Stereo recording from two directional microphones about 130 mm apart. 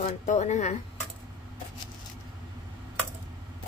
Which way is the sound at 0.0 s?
65° left (ahead or behind).